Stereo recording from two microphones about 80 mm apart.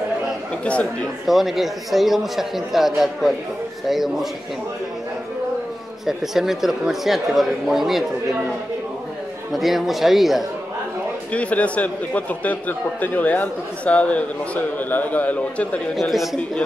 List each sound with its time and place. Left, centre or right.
1.2 s a man's voice: centre
6.0 s a man's voice: centre
9.5 s a man's voice: centre
11.3 s a man's voice: centre
16.0 s a man's voice: centre